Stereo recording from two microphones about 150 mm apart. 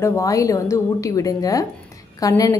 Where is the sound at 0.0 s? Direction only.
20° left (ahead or behind).